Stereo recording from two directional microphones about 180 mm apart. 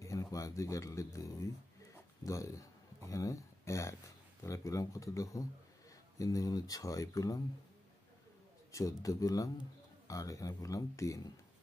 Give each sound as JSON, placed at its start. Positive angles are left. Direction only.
{"t": 0.0, "sound": "speech", "side_deg": 15}
{"t": 9.0, "sound": "speech", "side_deg": 20}